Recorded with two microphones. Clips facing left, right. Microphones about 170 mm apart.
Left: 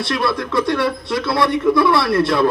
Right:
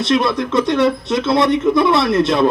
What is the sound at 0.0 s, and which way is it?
Speech, 20° right (ahead or behind).